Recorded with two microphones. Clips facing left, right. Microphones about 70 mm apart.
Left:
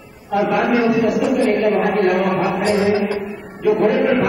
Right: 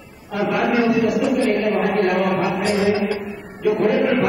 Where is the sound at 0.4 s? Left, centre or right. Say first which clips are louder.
Left 2 dB; centre.